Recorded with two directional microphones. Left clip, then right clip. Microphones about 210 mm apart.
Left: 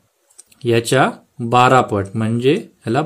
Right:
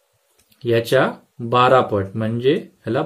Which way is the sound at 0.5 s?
25° left (ahead or behind).